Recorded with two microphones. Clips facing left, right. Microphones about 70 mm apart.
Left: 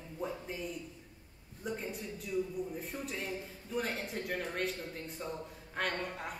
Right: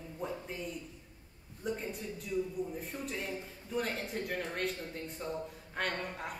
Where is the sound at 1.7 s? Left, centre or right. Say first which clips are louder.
Right 2 dB; centre.